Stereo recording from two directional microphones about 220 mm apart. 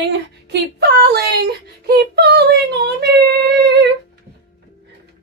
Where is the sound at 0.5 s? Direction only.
45° right (ahead or behind).